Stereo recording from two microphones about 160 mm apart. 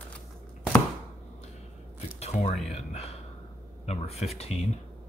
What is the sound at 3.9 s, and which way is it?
Speech, 40° left (ahead or behind).